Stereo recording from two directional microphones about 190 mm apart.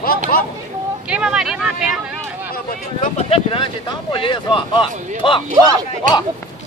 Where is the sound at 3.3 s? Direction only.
30° left (ahead or behind).